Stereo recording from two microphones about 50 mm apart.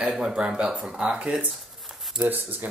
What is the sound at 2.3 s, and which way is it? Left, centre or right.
Speech, right.